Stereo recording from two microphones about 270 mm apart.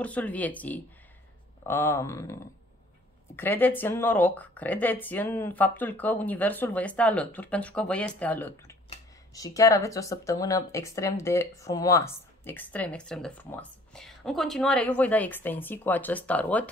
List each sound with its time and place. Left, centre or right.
0.0 s speech: centre